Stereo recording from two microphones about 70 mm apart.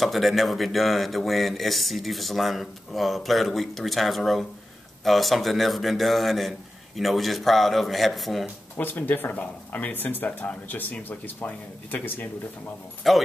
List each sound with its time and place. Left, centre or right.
0.0 s speech: centre
8.7 s speech: left
13.0 s speech: centre